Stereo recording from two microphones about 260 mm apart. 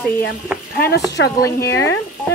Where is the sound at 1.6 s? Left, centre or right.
Centre.